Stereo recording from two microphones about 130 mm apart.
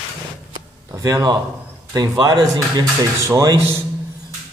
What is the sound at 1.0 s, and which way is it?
A man's voice, 30° right (ahead or behind).